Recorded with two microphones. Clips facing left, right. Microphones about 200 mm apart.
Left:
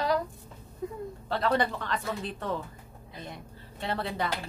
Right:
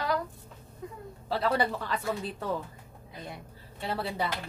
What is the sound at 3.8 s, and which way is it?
Speech, 5° right (ahead or behind).